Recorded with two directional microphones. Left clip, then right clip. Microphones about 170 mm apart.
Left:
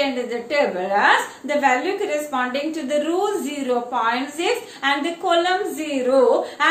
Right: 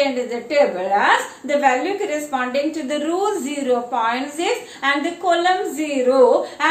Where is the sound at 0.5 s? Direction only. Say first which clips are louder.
Right 4 dB; 20° right (ahead or behind).